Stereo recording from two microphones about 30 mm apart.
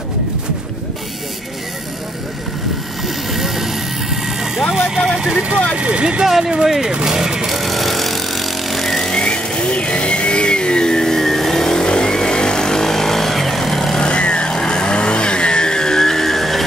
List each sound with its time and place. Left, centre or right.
3.3 s vehicle: centre
5.8 s speech: right
6.2 s speech: centre
7.1 s vehicle: centre
7.4 s vehicle: centre
9.1 s vehicle: left; by 13.9 s centre
13.9 s vehicle: left; by 16.6 s centre